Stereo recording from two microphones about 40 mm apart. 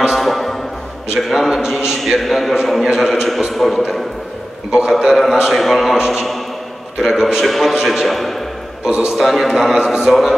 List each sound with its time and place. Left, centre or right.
0.1 s music: centre
1.3 s a man's voice: centre
4.6 s a man's voice: centre
4.9 s a man's voice: centre
5.9 s a man's voice: centre
7.4 s a man's voice: centre
7.7 s a man's voice: centre
8.0 s a man's voice: centre
8.8 s a man's voice: centre
9.1 s a man's voice: centre